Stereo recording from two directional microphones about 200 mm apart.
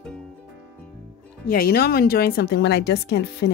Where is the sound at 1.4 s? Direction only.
50° left (ahead or behind).